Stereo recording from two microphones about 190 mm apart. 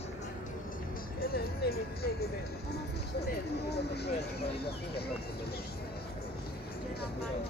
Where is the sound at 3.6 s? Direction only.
60° left (ahead or behind).